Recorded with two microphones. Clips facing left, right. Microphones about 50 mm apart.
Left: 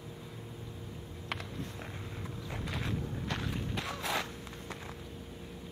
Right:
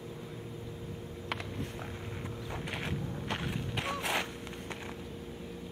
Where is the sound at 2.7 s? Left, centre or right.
Right.